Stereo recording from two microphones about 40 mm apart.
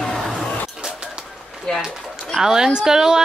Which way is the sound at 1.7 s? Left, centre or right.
Centre.